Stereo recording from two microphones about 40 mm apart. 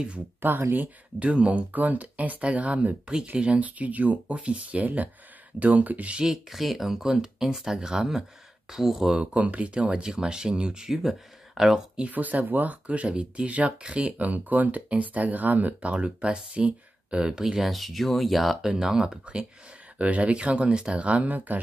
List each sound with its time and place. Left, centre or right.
0.4 s speech: right
1.2 s speech: right
6.1 s speech: centre
6.5 s speech: centre
9.2 s speech: right
10.0 s speech: centre
10.9 s speech: centre
12.1 s speech: right
12.8 s speech: right
17.6 s speech: centre
18.7 s speech: centre
20.0 s speech: right
21.0 s speech: right